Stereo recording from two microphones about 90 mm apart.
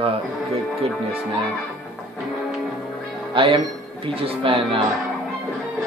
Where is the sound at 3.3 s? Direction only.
75° right (ahead or behind).